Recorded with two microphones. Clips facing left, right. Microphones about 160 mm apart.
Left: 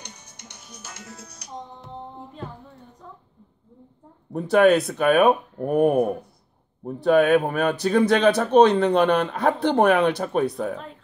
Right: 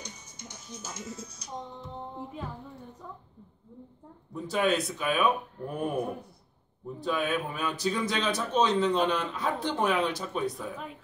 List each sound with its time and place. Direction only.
0.0 s music: 70° left (ahead or behind)
4.3 s speech: 65° left (ahead or behind)